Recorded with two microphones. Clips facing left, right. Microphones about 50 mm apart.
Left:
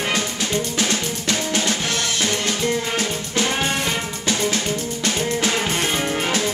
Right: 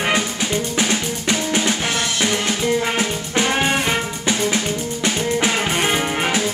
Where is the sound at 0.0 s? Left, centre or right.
Centre.